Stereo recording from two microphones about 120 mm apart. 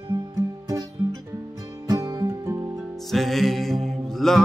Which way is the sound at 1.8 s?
30° right (ahead or behind).